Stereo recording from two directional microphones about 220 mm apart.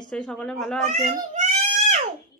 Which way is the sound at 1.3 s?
30° right (ahead or behind).